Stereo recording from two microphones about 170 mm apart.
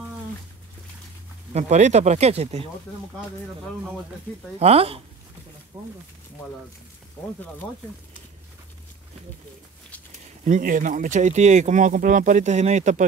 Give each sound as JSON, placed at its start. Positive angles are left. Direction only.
{"t": 1.5, "sound": "speech", "side_deg": -40}
{"t": 4.6, "sound": "speech", "side_deg": -35}
{"t": 5.7, "sound": "speech", "side_deg": -25}
{"t": 10.4, "sound": "speech", "side_deg": -50}